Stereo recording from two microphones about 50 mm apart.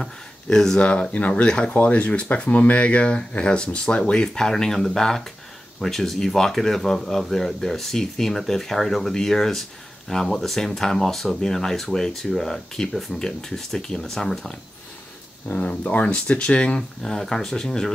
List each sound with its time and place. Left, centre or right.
0.0 s speech: centre
0.7 s speech: left
1.7 s speech: left; by 14.5 s centre
15.5 s speech: left; by 17.9 s centre